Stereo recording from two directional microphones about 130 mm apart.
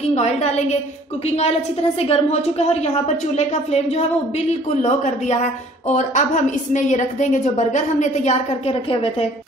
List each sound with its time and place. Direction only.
0.1 s a woman's voice: 55° left (ahead or behind)
8.8 s a woman's voice: 45° left (ahead or behind)